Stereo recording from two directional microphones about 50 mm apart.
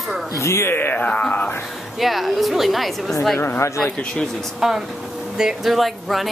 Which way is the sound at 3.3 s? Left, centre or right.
Left.